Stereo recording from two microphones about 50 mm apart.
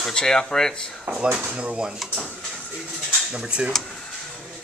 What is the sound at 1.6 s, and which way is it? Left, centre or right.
Speech, centre.